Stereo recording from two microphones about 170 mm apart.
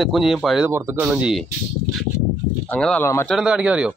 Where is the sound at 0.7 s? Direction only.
15° right (ahead or behind).